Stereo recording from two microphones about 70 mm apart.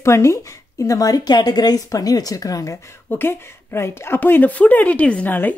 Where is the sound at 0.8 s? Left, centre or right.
Left.